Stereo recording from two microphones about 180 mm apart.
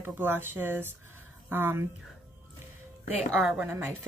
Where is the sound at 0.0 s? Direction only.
10° right (ahead or behind).